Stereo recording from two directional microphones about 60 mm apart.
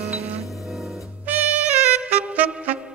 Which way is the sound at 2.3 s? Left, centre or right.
Right.